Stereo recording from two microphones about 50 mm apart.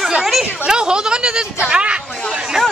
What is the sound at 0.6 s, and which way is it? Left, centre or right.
Speech, centre.